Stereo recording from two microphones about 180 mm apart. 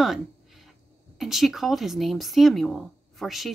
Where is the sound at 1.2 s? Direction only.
Centre (ahead or behind).